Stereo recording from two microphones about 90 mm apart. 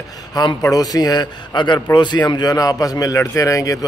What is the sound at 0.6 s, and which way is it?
A man's voice, 40° left (ahead or behind).